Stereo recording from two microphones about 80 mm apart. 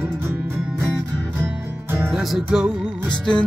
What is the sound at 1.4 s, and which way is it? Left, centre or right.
Music, right.